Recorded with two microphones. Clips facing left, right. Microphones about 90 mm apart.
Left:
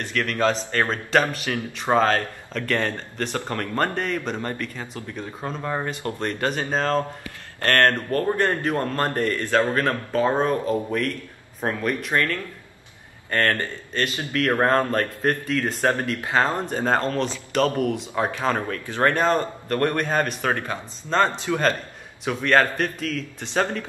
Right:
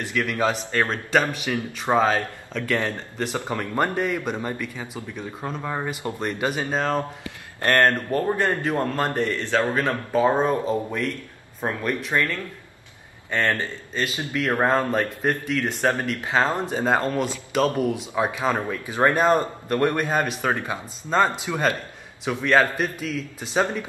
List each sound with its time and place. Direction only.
0.0 s a man's voice: 10° right (ahead or behind)
8.3 s a man's voice: centre (ahead or behind); by 10.8 s 20° right (ahead or behind)
11.6 s a man's voice: centre (ahead or behind)
13.5 s a man's voice: 10° right (ahead or behind)